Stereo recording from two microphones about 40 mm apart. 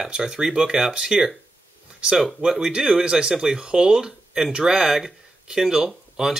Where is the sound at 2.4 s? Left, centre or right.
Right.